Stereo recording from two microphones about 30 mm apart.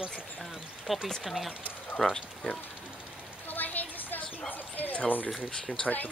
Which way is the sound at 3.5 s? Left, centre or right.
Left.